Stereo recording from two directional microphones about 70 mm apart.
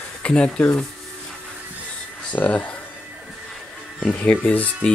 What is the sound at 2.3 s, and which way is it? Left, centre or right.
Speech, left.